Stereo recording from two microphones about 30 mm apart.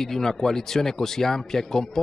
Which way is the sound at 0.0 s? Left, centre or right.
Centre.